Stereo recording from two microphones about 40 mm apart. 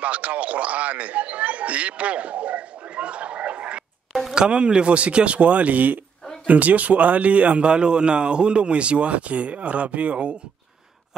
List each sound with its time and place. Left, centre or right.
0.0 s a man's voice: right
4.1 s a sound: centre
4.4 s a man's voice: right